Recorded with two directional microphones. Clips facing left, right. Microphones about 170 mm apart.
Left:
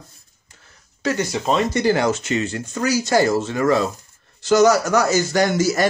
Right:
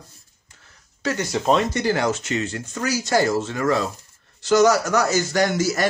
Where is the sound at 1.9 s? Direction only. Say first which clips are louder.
Left 5 dB; 25° left (ahead or behind).